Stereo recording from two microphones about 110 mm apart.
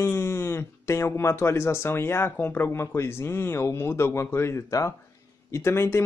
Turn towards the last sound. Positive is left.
turn(degrees=25)  # may be behind; listen again after turning